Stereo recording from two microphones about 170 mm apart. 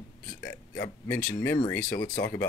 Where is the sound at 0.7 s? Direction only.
10° left (ahead or behind).